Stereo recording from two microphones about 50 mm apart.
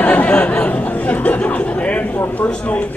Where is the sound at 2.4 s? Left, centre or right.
Left.